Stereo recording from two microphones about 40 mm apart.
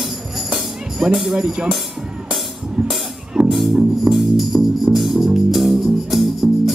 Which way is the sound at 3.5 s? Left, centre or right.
Centre.